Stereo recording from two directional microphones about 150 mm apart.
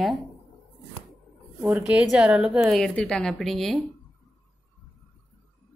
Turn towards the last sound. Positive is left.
turn(degrees=0)  # may be behind; listen again after turning